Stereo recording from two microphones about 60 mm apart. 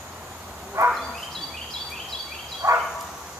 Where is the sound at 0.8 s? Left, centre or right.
Right.